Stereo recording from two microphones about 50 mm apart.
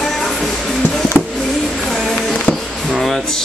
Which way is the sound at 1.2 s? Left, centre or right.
Right.